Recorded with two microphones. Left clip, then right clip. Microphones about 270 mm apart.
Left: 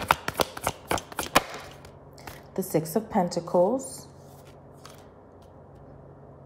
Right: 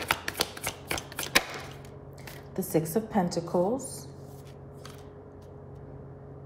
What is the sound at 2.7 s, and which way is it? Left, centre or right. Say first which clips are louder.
A woman's voice: left 1 dB; left.